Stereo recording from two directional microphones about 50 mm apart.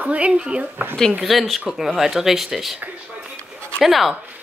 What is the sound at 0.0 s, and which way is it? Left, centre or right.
Speech, right.